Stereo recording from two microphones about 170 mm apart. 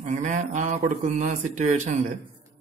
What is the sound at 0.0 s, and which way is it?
A man's voice, 45° right (ahead or behind).